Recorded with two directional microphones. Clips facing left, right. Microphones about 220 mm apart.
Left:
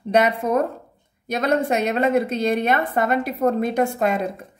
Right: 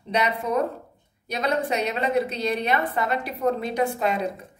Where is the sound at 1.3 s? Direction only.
50° left (ahead or behind).